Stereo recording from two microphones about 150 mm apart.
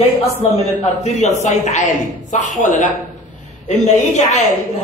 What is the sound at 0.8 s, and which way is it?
A man's voice, 50° left (ahead or behind).